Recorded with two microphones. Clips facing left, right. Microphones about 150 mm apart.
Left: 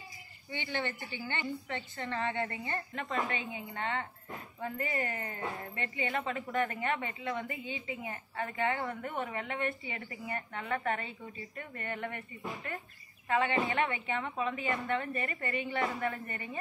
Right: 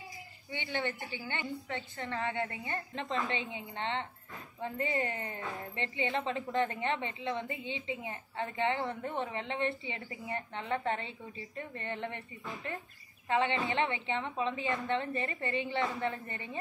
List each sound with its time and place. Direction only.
0.5 s a woman's voice: 15° right (ahead or behind)
3.3 s a woman's voice: 25° right (ahead or behind)
13.3 s a woman's voice: 25° right (ahead or behind)